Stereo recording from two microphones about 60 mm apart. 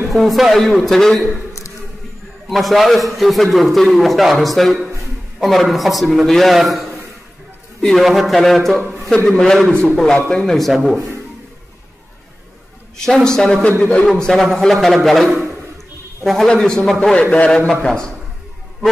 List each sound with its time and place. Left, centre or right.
0.1 s a man's voice: centre
2.4 s a man's voice: centre
7.8 s a man's voice: centre
12.9 s a man's voice: centre
14.0 s a man's voice: centre
17.1 s a man's voice: left